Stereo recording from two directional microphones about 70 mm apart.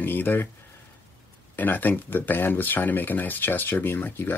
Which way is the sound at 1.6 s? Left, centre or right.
Left.